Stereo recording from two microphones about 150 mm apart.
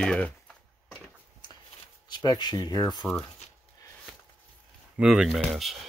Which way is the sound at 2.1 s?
30° left (ahead or behind).